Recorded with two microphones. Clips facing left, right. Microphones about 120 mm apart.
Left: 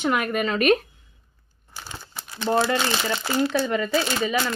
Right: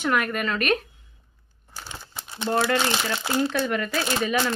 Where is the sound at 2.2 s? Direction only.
20° right (ahead or behind).